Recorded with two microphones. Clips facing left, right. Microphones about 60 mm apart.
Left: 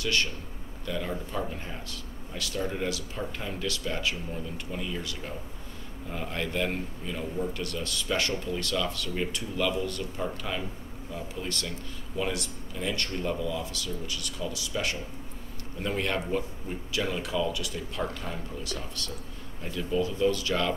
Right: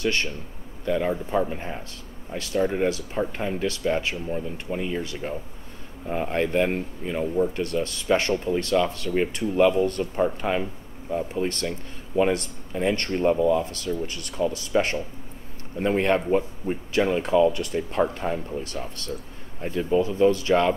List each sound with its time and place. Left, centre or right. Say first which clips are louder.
0.0 s a man's voice: right 4 dB; right